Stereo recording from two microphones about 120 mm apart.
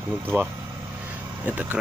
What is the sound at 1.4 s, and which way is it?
Speech, 15° right (ahead or behind).